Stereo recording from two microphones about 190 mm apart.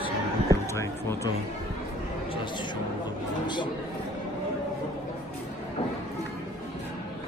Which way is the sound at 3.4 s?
25° left (ahead or behind).